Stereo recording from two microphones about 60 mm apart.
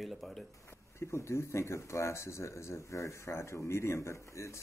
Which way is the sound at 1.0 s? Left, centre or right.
Left.